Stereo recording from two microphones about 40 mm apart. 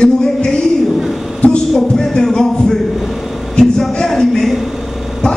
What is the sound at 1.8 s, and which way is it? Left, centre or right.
Speech, centre.